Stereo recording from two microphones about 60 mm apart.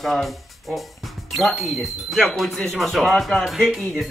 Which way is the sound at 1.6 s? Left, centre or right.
Centre.